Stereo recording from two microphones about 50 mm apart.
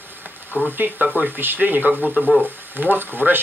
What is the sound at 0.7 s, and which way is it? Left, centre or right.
Speech, right.